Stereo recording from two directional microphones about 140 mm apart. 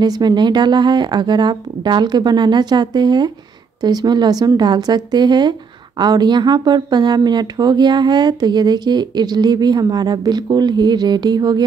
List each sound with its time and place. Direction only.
0.0 s a woman's voice: 30° right (ahead or behind)